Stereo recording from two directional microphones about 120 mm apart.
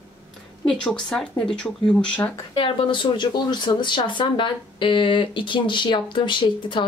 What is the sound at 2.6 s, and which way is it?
Speech, 45° left (ahead or behind).